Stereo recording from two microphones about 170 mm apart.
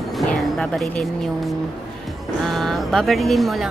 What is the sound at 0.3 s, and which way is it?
Music, 5° left (ahead or behind).